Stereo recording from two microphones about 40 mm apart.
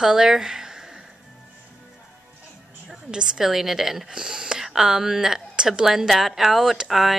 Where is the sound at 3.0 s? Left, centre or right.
Centre.